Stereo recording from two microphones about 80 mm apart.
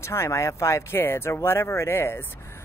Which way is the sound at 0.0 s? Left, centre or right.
Left.